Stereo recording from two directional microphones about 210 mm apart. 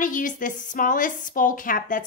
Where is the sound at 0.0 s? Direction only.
40° left (ahead or behind).